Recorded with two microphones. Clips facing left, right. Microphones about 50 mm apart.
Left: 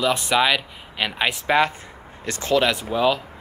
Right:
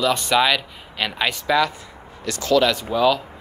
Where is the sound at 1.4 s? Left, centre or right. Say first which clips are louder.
Even; left.